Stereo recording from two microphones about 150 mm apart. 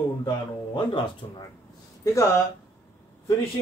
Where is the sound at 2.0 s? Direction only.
20° left (ahead or behind).